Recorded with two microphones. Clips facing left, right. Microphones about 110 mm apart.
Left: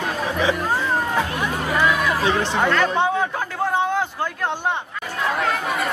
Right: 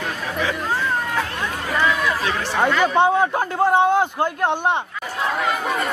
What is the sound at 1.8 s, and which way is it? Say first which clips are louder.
Chatter: even; 20° left (ahead or behind).